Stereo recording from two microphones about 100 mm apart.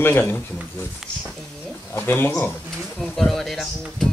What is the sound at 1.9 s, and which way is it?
Speech, 20° left (ahead or behind).